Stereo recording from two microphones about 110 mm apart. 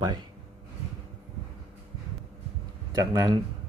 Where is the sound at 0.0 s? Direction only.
45° right (ahead or behind).